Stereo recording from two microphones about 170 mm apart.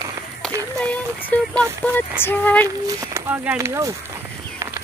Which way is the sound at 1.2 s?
5° left (ahead or behind).